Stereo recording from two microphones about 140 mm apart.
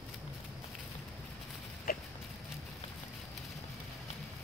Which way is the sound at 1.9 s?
90° left.